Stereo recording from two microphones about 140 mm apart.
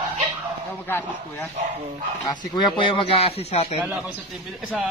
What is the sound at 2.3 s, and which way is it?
Speech, 30° left (ahead or behind).